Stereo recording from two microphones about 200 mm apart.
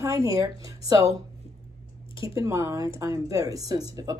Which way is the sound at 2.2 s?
15° right (ahead or behind).